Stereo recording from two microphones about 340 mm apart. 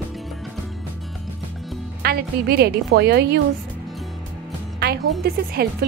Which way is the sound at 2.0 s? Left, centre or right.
Right.